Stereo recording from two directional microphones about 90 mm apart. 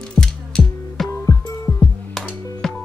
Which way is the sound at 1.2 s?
40° left (ahead or behind).